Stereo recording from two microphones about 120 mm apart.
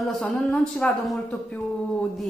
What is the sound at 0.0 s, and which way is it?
A woman's voice, 5° left (ahead or behind).